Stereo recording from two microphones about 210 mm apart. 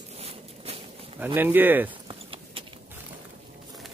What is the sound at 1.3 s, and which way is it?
Speech, 10° right (ahead or behind).